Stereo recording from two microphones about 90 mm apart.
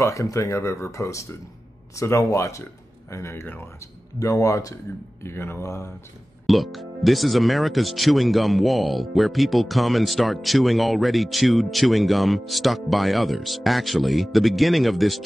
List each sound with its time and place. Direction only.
0.0 s speech: 35° left (ahead or behind)
4.2 s speech: 35° left (ahead or behind)
5.2 s speech: 25° left (ahead or behind)
6.4 s speech: centre (ahead or behind)